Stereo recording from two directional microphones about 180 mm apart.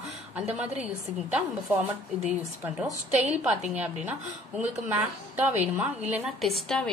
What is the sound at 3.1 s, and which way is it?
Speech, 40° right (ahead or behind).